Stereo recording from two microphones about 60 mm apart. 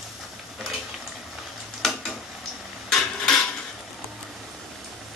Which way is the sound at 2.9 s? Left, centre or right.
Centre.